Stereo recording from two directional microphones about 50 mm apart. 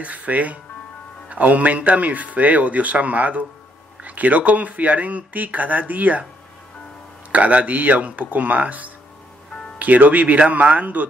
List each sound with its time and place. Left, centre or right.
0.0 s speech: right
7.3 s speech: right